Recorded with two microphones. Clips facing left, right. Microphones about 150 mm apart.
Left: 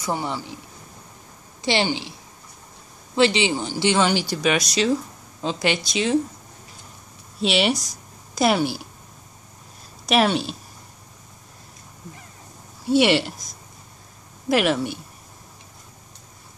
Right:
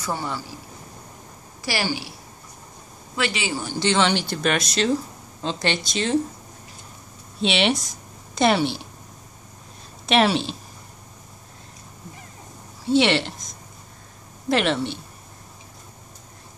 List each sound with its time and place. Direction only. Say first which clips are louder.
0.0 s a woman's voice: left 2 dB; 15° left (ahead or behind)
1.6 s a woman's voice: left 4 dB; 25° left (ahead or behind)
3.2 s a woman's voice: left 7 dB; 25° left (ahead or behind)
3.7 s speech: right 1 dB; 10° left (ahead or behind)
7.3 s speech: even; 5° left (ahead or behind)
10.0 s speech: even; centre (ahead or behind)
12.9 s speech: left 1 dB; 10° left (ahead or behind)